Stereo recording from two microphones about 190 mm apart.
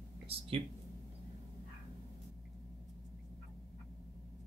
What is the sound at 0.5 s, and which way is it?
Speech, 30° right (ahead or behind).